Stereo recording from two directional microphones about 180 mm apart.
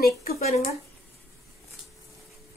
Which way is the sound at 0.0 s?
55° left (ahead or behind).